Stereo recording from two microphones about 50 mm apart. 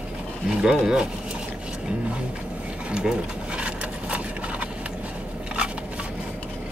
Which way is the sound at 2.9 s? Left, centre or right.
Centre.